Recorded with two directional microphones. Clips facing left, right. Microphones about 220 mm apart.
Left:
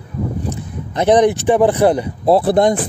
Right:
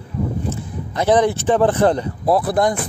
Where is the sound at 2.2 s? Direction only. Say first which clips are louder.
Left 5 dB; 25° left (ahead or behind).